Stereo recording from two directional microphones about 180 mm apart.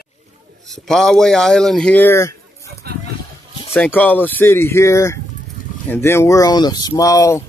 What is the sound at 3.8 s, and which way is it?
Speech, 10° left (ahead or behind).